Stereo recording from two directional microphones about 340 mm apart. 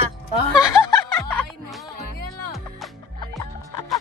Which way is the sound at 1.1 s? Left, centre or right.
Centre.